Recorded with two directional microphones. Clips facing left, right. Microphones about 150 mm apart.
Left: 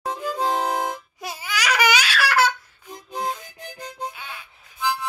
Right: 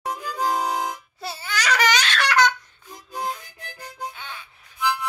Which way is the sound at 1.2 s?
10° left (ahead or behind).